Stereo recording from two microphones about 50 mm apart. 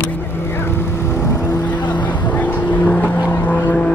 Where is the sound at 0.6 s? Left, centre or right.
Left.